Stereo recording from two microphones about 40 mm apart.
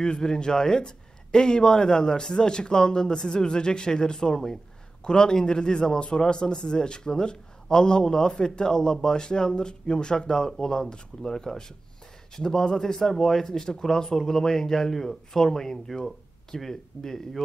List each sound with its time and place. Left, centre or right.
0.0 s a man's voice: centre